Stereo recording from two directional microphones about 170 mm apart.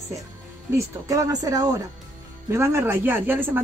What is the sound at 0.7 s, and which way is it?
Speech, 20° right (ahead or behind).